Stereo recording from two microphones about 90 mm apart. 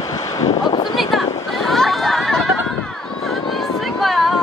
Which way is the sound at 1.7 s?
Centre (ahead or behind).